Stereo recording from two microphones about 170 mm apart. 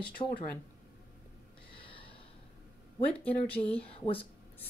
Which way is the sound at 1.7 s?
30° left (ahead or behind).